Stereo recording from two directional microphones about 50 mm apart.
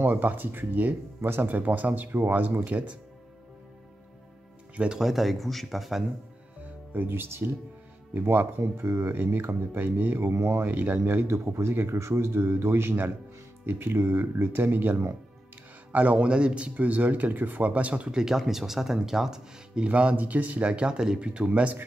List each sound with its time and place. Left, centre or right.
0.0 s speech: right
4.7 s speech: centre
5.0 s speech: centre
6.9 s speech: right
8.1 s speech: right
8.5 s speech: right
9.1 s speech: right
10.2 s speech: right
10.7 s speech: right
11.2 s speech: right
11.9 s speech: right
16.3 s speech: centre
18.2 s speech: centre
19.8 s speech: right